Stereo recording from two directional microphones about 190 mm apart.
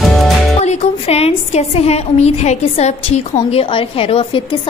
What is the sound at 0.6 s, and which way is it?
A woman's voice, 35° left (ahead or behind).